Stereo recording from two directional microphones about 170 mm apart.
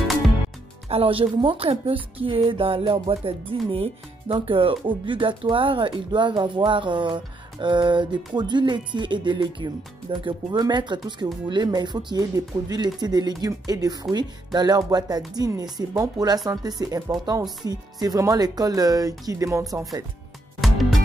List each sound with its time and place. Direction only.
0.8 s speech: 35° right (ahead or behind)
7.6 s music: 30° right (ahead or behind)
20.6 s music: centre (ahead or behind)